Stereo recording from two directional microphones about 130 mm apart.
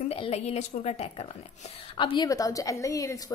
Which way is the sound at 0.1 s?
50° left (ahead or behind).